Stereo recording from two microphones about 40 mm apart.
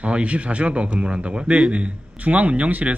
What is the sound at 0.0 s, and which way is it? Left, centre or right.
A man's voice, right.